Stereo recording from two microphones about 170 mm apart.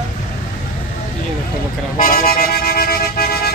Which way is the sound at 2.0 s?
65° left (ahead or behind).